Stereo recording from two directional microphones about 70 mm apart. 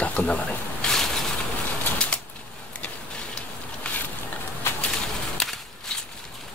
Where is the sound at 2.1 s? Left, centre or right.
Centre.